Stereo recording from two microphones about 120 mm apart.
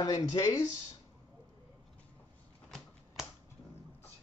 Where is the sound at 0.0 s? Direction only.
30° left (ahead or behind).